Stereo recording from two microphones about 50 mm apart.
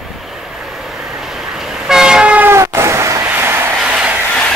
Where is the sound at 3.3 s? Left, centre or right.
Right.